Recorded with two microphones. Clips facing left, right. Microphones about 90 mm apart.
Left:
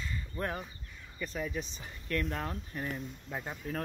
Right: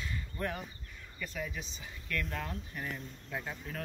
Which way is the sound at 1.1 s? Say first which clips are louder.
Left 4 dB; 30° left (ahead or behind).